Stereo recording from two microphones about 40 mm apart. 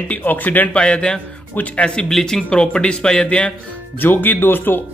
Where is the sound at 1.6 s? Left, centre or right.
Left.